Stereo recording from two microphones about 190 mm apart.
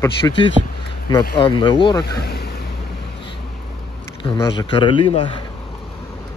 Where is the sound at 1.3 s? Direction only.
25° left (ahead or behind).